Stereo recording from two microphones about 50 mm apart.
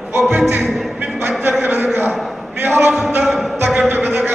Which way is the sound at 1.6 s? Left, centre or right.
Right.